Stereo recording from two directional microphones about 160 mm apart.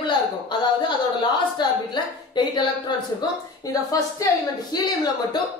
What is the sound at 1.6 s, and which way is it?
A woman's voice, 25° left (ahead or behind).